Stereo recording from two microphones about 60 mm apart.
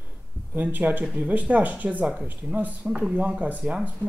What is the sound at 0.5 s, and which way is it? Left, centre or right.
Speech, right.